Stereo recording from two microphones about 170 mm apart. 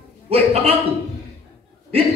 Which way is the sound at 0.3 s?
35° right (ahead or behind).